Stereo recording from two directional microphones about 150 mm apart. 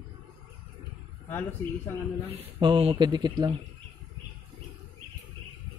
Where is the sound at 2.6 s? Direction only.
35° right (ahead or behind).